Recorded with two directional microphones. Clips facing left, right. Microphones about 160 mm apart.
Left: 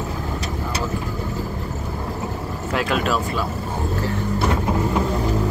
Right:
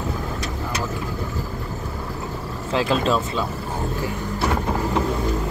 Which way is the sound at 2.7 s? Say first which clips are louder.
Right 2 dB; 30° right (ahead or behind).